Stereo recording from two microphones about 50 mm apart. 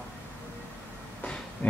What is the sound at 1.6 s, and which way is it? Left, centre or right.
Train, left.